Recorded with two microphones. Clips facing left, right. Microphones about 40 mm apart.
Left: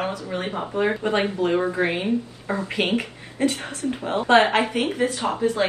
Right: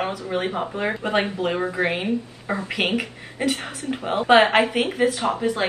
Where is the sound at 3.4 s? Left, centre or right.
Right.